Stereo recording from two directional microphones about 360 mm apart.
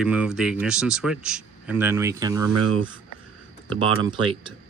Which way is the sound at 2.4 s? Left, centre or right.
Right.